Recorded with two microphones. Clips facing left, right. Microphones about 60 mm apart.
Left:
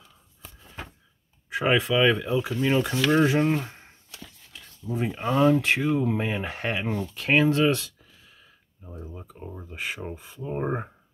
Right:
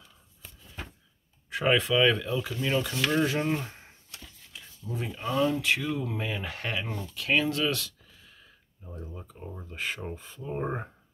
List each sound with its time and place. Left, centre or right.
1.5 s speech: centre
3.6 s a sound: centre
4.8 s speech: left
5.1 s speech: left
8.0 s speech: centre